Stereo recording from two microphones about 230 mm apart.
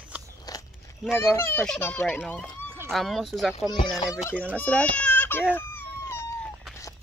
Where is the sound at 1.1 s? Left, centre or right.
Centre.